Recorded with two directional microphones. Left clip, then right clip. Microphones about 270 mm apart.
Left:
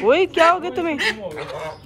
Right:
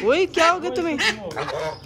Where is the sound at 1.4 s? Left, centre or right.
Right.